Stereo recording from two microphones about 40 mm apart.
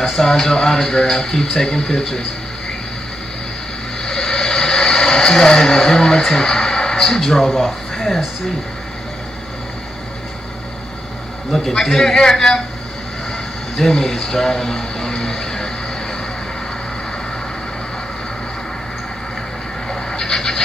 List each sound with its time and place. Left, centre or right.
0.0 s speech: centre
4.0 s a sound: centre
6.2 s speech: centre
11.8 s speech: centre
13.7 s speech: centre
19.9 s a sound: centre